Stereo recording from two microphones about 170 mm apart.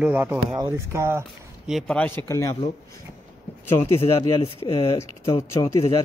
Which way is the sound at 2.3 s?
15° left (ahead or behind).